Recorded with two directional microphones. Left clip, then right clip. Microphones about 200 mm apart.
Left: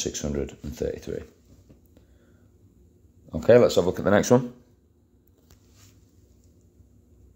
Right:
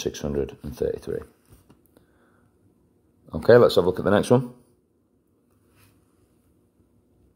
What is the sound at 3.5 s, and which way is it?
Speech, 25° right (ahead or behind).